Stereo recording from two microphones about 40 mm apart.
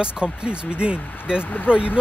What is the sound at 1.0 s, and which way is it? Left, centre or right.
Speech, left.